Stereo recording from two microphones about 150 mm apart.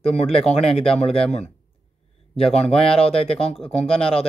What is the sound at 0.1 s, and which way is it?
Speech, 40° left (ahead or behind).